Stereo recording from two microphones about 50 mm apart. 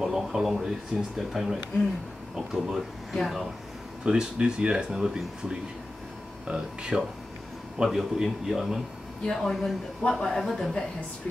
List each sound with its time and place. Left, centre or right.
0.0 s speech: centre
4.0 s speech: centre
7.8 s speech: centre
9.3 s speech: centre